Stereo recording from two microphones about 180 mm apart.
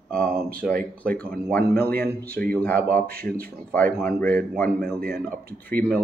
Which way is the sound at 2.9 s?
55° right (ahead or behind).